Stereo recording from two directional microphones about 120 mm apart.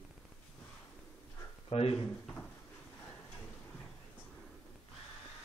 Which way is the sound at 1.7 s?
55° left (ahead or behind).